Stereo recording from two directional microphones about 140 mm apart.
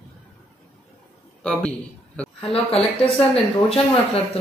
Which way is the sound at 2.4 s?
45° left (ahead or behind).